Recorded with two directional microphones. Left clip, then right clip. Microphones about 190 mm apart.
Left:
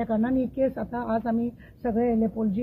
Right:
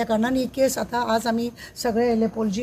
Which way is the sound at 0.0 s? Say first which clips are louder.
Right 4 dB; 15° right (ahead or behind).